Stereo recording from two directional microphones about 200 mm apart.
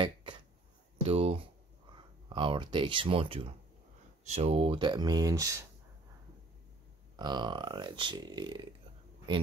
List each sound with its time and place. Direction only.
0.0 s a sound: 25° right (ahead or behind)
2.2 s speech: 25° right (ahead or behind)
7.2 s speech: 20° right (ahead or behind)